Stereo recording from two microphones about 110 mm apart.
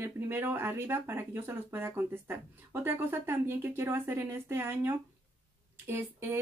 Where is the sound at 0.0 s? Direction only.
20° right (ahead or behind).